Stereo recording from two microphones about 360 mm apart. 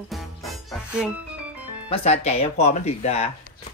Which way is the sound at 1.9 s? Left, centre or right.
Centre.